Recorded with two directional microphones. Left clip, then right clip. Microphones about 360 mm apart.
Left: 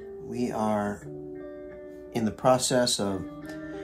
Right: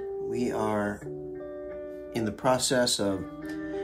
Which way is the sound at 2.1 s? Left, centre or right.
Centre.